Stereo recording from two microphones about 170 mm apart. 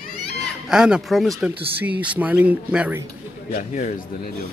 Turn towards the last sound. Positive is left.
turn(degrees=50)  # may be behind; listen again after turning